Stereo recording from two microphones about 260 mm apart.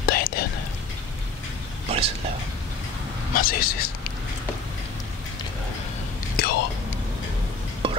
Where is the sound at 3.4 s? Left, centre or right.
Left.